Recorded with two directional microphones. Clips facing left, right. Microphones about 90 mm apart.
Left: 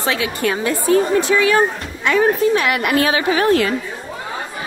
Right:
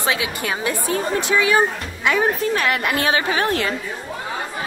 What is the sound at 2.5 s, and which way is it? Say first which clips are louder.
A woman's voice: left 4 dB; 35° right (ahead or behind).